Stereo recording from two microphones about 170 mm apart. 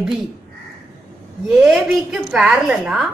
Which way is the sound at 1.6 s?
5° right (ahead or behind).